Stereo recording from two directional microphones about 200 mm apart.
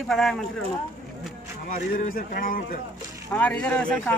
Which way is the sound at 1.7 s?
45° left (ahead or behind).